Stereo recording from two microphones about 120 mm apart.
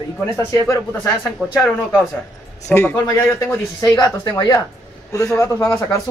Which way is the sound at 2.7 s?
20° left (ahead or behind).